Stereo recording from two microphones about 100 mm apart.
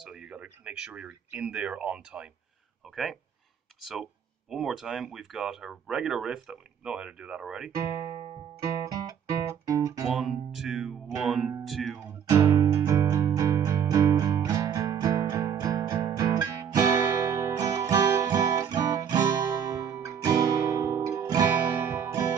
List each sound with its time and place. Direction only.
0.0 s speech: 10° right (ahead or behind)
3.8 s speech: 5° right (ahead or behind)
9.7 s guitar: 35° right (ahead or behind)
10.1 s speech: 5° right (ahead or behind)
12.4 s music: 30° right (ahead or behind)